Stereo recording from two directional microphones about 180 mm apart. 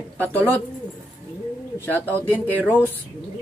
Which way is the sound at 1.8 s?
10° left (ahead or behind).